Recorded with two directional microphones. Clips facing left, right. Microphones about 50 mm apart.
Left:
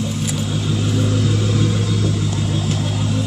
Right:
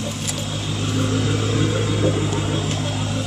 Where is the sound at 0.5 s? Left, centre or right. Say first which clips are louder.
Left 4 dB; centre.